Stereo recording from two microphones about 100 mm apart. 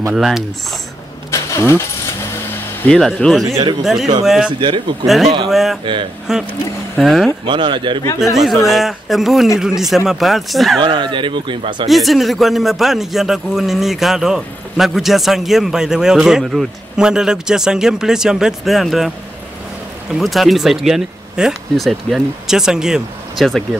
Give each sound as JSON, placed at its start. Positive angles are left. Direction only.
{"t": 0.1, "sound": "a man's voice", "side_deg": -5}
{"t": 1.3, "sound": "vehicle", "side_deg": 30}
{"t": 3.2, "sound": "a man's voice", "side_deg": 0}
{"t": 4.5, "sound": "speech", "side_deg": -55}
{"t": 5.0, "sound": "a man's voice", "side_deg": 0}
{"t": 7.4, "sound": "speech", "side_deg": -55}
{"t": 8.2, "sound": "a man's voice", "side_deg": 0}
{"t": 10.8, "sound": "speech", "side_deg": -50}
{"t": 11.9, "sound": "a man's voice", "side_deg": 0}
{"t": 20.2, "sound": "a man's voice", "side_deg": 0}